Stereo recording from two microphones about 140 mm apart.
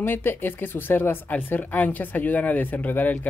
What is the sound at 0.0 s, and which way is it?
Speech, 15° left (ahead or behind).